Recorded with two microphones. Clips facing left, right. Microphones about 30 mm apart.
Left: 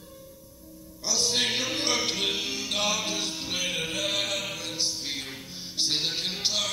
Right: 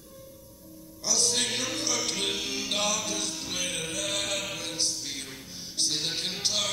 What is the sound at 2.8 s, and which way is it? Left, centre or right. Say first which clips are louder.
Music: left 2 dB; centre.